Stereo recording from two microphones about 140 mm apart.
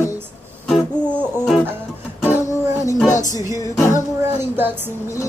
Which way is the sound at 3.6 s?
20° left (ahead or behind).